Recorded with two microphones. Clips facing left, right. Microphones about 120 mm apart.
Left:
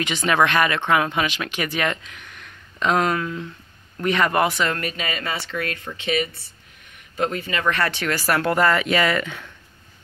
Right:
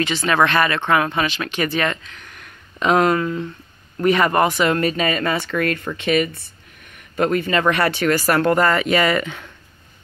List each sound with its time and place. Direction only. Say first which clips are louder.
0.0 s speech: right 2 dB; 15° left (ahead or behind)
2.2 s a sound: right 1 dB; centre (ahead or behind)
4.0 s speech: right 4 dB; 5° right (ahead or behind)
4.9 s speech: right 8 dB; 45° right (ahead or behind); by 7.5 s 60° right (ahead or behind)
7.9 s speech: right 5 dB; centre (ahead or behind)